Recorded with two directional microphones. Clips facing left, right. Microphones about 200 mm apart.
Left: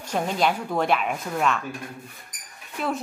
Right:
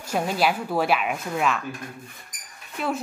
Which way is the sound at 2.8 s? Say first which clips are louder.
Even; centre (ahead or behind).